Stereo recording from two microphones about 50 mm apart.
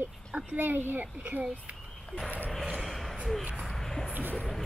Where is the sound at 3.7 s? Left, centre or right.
Centre.